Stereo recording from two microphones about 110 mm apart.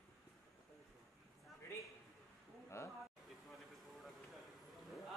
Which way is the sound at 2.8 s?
25° left (ahead or behind).